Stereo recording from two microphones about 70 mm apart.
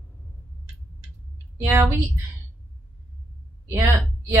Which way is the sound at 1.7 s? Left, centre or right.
Right.